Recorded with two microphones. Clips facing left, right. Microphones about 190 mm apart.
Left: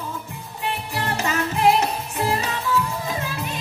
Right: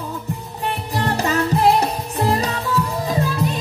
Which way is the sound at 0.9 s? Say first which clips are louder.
Right 6 dB; 35° right (ahead or behind).